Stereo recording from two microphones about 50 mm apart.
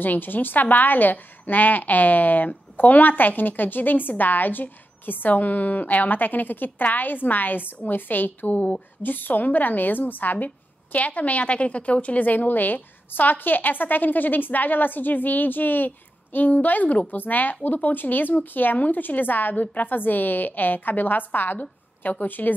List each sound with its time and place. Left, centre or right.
0.0 s a woman's voice: left